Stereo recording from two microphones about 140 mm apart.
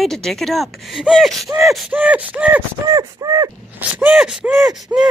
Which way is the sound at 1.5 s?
Centre (ahead or behind).